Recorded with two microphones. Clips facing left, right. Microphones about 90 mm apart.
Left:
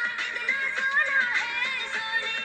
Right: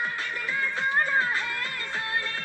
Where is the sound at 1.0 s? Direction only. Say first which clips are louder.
Right 1 dB; 40° right (ahead or behind).